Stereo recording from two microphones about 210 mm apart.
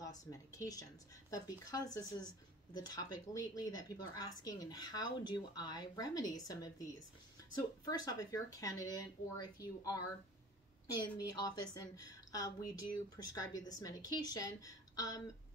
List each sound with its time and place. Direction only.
0.0 s a woman's voice: 15° left (ahead or behind)
11.1 s a woman's voice: 20° left (ahead or behind)